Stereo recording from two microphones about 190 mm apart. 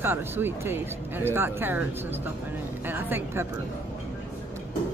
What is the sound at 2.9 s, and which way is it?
Speech, 10° right (ahead or behind).